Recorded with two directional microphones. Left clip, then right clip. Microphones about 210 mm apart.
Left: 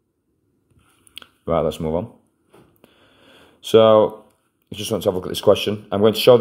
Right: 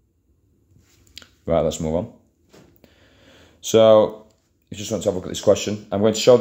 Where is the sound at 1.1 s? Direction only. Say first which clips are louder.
Even; 15° left (ahead or behind).